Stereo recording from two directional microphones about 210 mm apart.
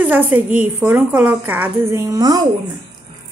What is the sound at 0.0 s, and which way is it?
A woman's voice, 10° right (ahead or behind).